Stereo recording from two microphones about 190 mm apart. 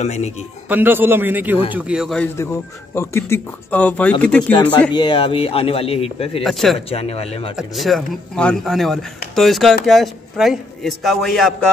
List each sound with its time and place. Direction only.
0.0 s speech: 35° left (ahead or behind)
0.7 s a man's voice: 10° right (ahead or behind)
2.3 s speech: 15° left (ahead or behind)
4.9 s speech: 25° left (ahead or behind)
6.4 s speech: centre (ahead or behind)
6.9 s speech: 30° left (ahead or behind)
7.5 s speech: centre (ahead or behind)